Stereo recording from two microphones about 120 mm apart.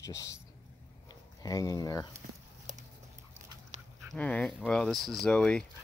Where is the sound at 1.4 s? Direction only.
30° left (ahead or behind).